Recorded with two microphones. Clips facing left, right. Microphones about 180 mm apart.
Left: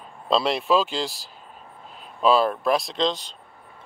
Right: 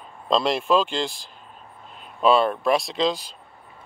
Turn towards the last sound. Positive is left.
turn(degrees=-5)  # may be behind; listen again after turning